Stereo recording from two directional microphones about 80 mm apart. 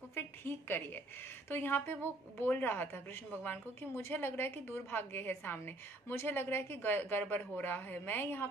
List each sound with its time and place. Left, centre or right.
0.1 s a woman's voice: left